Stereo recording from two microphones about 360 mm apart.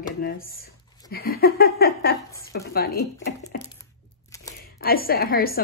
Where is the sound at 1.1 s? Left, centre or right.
Left.